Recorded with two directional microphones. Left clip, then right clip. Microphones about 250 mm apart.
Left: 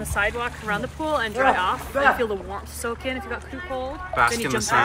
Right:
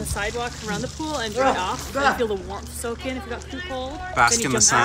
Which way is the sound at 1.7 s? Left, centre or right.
Left.